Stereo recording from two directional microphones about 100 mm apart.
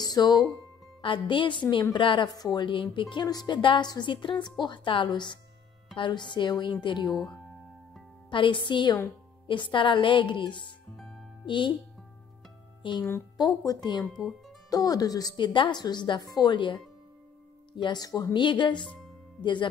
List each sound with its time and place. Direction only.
0.0 s speech: 45° left (ahead or behind)
1.0 s a woman's voice: 55° left (ahead or behind)
2.2 s a woman's voice: 40° left (ahead or behind); by 3.3 s 55° left (ahead or behind)
3.3 s a woman's voice: 45° left (ahead or behind)
7.1 s speech: 5° left (ahead or behind)
8.3 s a woman's voice: 55° left (ahead or behind)
11.0 s music: centre (ahead or behind)
11.4 s a woman's voice: 55° left (ahead or behind)
12.8 s a woman's voice: 55° left (ahead or behind)
13.4 s a woman's voice: 40° left (ahead or behind)